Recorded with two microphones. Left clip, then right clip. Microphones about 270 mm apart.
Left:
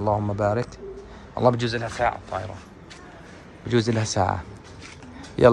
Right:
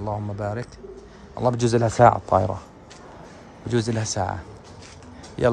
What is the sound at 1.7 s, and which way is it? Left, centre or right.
Speech, right.